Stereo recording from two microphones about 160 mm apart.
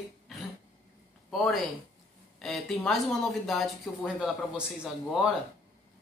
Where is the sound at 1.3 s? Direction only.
Centre (ahead or behind).